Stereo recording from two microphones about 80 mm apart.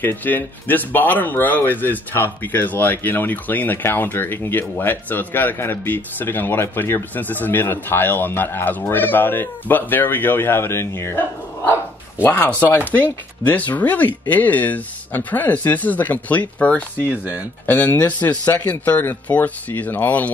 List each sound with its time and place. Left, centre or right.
0.0 s speech: left
12.2 s speech: left
17.0 s speech: centre
17.6 s speech: left